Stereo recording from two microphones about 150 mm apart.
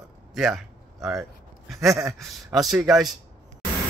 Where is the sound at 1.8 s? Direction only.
20° right (ahead or behind).